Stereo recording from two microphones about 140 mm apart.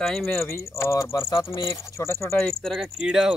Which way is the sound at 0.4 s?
20° left (ahead or behind).